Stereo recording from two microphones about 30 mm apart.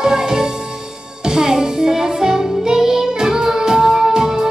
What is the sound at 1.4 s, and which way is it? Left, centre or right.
Music, right.